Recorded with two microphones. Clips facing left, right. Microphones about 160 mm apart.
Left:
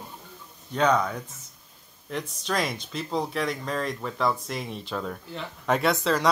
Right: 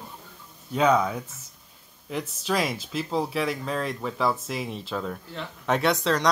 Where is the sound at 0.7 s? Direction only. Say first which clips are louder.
Right 2 dB; 5° right (ahead or behind).